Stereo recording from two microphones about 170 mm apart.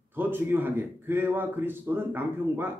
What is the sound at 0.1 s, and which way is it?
A man's voice, 10° right (ahead or behind).